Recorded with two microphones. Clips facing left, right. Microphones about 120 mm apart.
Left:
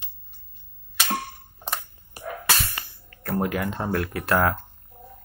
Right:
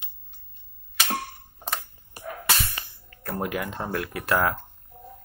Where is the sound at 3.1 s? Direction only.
15° right (ahead or behind).